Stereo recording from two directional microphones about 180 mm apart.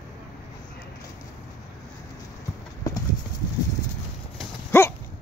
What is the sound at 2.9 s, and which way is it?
Clip-clop, 20° left (ahead or behind).